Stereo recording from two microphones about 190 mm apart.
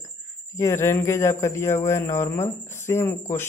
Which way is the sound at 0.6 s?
15° left (ahead or behind).